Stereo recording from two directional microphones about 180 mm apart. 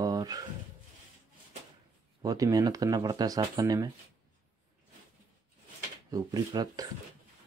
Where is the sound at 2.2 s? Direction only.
20° right (ahead or behind).